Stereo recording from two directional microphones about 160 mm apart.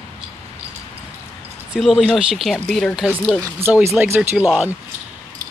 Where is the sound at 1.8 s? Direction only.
Centre (ahead or behind).